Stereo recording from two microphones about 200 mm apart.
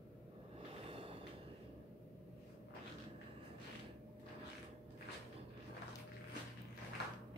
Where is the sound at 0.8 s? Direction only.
25° right (ahead or behind).